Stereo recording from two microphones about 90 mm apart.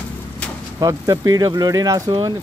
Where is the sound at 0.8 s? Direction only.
45° right (ahead or behind).